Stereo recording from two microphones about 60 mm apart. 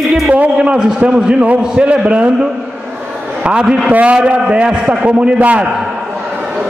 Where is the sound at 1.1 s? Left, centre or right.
Centre.